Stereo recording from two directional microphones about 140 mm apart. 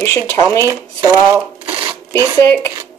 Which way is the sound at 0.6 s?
25° right (ahead or behind).